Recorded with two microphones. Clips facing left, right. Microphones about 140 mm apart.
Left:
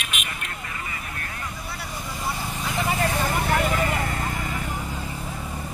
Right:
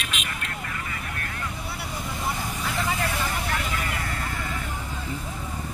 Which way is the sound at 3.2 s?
55° left (ahead or behind).